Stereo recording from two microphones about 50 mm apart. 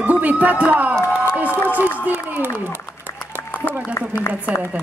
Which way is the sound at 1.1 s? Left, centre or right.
Right.